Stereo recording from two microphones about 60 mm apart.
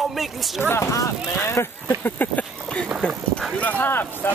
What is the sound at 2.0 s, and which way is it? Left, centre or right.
Speech, left.